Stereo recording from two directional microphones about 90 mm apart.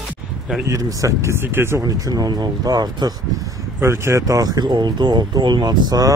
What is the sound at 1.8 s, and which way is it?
Speech, 45° right (ahead or behind).